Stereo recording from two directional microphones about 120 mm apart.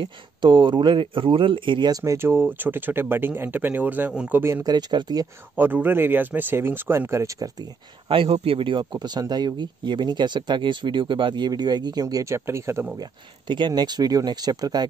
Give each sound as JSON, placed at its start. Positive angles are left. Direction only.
{"t": 0.0, "sound": "speech", "side_deg": -40}
{"t": 4.6, "sound": "speech", "side_deg": -35}
{"t": 5.6, "sound": "speech", "side_deg": -15}
{"t": 8.1, "sound": "speech", "side_deg": -50}
{"t": 13.5, "sound": "speech", "side_deg": -40}